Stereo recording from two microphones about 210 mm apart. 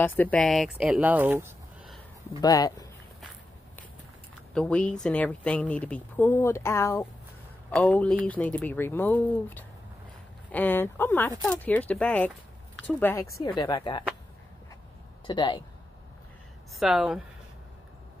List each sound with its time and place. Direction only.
0.0 s speech: 10° left (ahead or behind); by 2.0 s 10° right (ahead or behind)
2.4 s speech: 15° left (ahead or behind)
4.6 s speech: 5° left (ahead or behind); by 14.0 s 20° left (ahead or behind)
15.2 s speech: 20° left (ahead or behind)
16.8 s speech: 5° right (ahead or behind)